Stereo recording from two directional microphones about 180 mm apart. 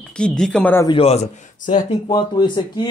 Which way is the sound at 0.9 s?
35° left (ahead or behind).